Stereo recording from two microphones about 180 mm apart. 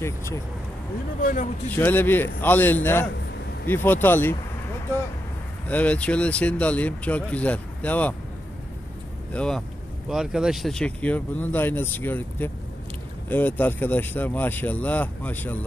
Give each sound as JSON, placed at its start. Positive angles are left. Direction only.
{"t": 0.0, "sound": "speech", "side_deg": 15}
{"t": 1.2, "sound": "a man's voice", "side_deg": 45}
{"t": 1.8, "sound": "speech", "side_deg": 10}
{"t": 5.7, "sound": "speech", "side_deg": 10}
{"t": 9.3, "sound": "speech", "side_deg": 5}